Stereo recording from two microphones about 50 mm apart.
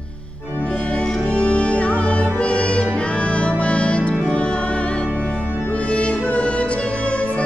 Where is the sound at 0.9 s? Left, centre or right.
Left.